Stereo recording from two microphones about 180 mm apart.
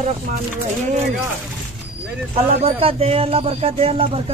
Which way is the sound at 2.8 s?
30° right (ahead or behind).